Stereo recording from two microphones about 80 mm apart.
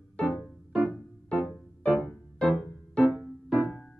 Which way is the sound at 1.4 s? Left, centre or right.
Centre.